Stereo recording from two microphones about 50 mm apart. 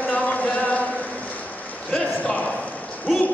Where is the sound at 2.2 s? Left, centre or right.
Left.